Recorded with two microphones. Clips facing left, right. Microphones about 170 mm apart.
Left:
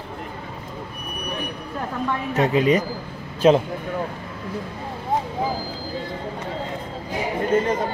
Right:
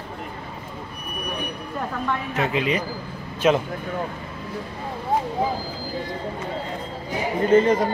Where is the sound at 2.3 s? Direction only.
40° left (ahead or behind).